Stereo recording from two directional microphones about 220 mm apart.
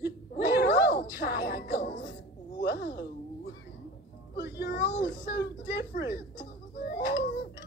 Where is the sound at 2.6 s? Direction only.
50° left (ahead or behind).